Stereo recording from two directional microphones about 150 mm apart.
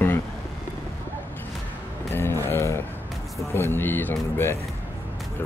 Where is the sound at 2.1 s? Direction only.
15° left (ahead or behind).